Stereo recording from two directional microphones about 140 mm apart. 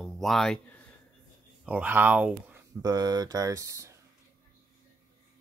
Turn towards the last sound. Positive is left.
turn(degrees=-20)  # may be behind; listen again after turning